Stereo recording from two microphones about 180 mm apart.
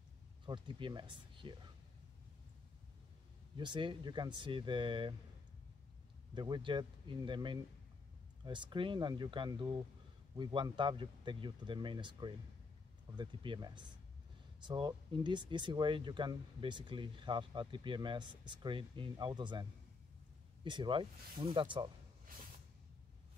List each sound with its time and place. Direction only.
0.5 s speech: 25° right (ahead or behind)
3.5 s speech: 25° right (ahead or behind)
6.3 s speech: 25° right (ahead or behind)